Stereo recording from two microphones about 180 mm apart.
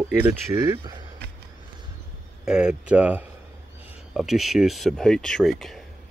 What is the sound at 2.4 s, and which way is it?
Speech, 5° right (ahead or behind).